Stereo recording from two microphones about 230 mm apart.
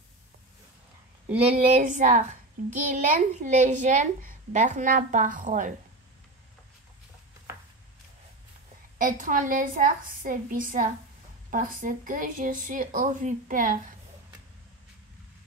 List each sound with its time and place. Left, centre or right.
1.7 s speech: right
8.9 s speech: right